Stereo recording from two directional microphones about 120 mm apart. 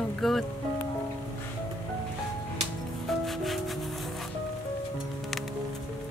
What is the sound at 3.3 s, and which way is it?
Music, centre (ahead or behind).